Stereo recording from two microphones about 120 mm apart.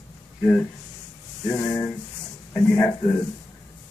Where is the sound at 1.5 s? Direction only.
5° left (ahead or behind).